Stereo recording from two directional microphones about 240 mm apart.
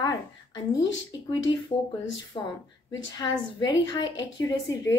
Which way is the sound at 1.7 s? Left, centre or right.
Left.